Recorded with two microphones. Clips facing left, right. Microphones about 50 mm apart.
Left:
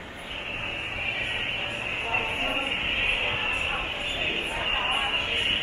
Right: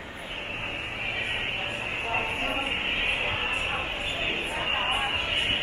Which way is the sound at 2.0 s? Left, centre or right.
Centre.